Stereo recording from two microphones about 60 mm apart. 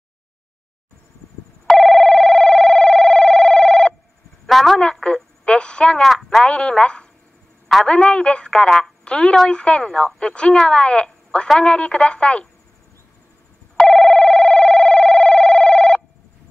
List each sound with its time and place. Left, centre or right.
1.7 s a sound: centre
5.0 s telephone: centre
7.8 s a woman's voice: centre
11.4 s speech: centre
11.7 s a woman's voice: centre
13.7 s a sound: centre